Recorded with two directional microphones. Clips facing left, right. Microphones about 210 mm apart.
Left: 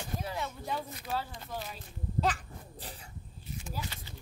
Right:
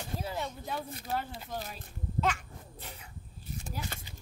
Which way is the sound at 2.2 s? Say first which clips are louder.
Even; 35° left (ahead or behind).